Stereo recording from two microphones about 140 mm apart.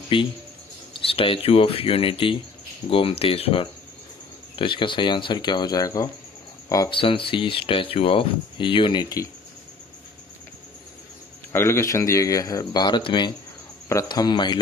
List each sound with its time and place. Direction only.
0.1 s speech: 40° left (ahead or behind)
6.9 s speech: 40° left (ahead or behind)
11.5 s speech: 20° left (ahead or behind)